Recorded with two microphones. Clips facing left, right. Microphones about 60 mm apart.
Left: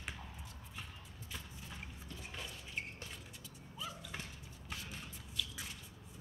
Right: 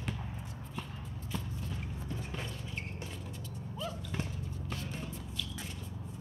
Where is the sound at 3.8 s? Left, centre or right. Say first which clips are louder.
Right 5 dB; centre.